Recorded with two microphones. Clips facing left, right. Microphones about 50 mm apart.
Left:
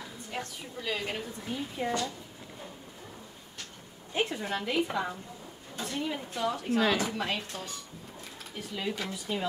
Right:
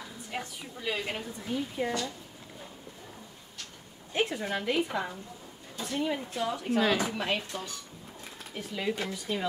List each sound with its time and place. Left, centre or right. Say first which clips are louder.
0.0 s a woman's voice: even; centre
4.1 s a woman's voice: right 1 dB; centre